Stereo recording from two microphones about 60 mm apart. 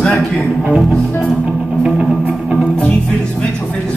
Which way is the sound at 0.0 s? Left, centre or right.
Centre.